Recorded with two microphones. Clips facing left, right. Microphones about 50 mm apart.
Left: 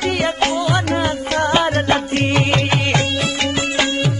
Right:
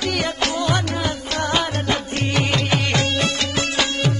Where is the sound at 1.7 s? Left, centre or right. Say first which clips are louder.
Left 6 dB; left.